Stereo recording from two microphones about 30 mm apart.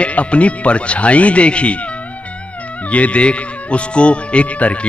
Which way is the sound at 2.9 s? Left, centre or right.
Left.